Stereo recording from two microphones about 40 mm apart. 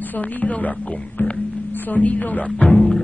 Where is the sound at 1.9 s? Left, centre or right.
Left.